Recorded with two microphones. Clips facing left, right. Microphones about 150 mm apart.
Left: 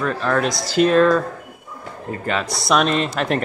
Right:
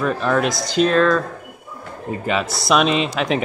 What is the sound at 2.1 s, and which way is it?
Speech, 10° right (ahead or behind).